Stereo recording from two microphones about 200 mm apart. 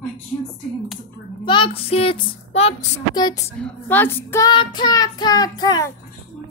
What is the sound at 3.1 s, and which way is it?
Child singing, 20° left (ahead or behind).